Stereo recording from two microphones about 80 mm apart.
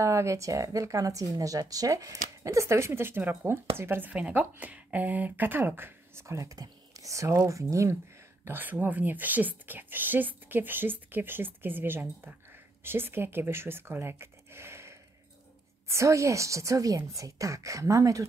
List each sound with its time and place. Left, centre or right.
0.0 s a woman's voice: right
6.2 s a woman's voice: right
8.5 s a woman's voice: right